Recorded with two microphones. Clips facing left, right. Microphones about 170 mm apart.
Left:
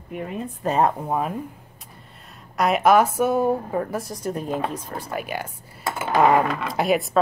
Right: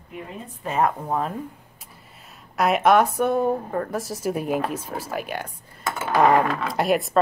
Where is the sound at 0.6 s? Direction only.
35° left (ahead or behind).